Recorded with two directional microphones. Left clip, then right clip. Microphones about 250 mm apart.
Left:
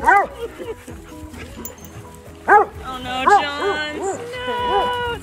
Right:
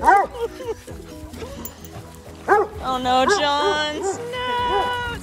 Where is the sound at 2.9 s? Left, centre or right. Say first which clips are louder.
Left 2 dB; centre.